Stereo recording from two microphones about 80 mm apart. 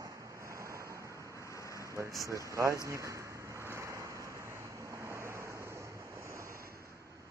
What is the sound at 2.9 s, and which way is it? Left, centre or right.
Waves, right.